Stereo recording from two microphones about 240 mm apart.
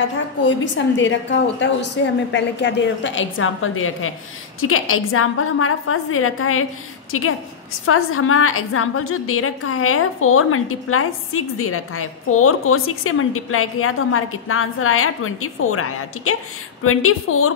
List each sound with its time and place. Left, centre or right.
0.4 s a woman's voice: left